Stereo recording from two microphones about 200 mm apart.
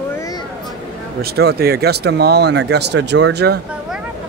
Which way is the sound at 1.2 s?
55° right (ahead or behind).